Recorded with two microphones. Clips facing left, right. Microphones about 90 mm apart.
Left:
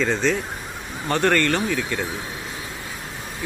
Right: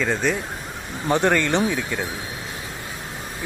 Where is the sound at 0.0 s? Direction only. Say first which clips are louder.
Left 1 dB; 10° right (ahead or behind).